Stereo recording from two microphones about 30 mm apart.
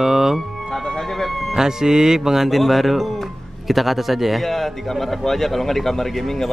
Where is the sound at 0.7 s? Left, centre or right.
Centre.